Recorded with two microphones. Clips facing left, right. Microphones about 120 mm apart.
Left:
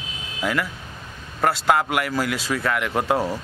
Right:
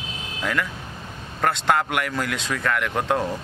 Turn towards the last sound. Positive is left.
turn(degrees=5)  # may be behind; listen again after turning